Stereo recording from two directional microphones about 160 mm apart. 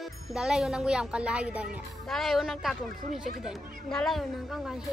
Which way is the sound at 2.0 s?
Centre (ahead or behind).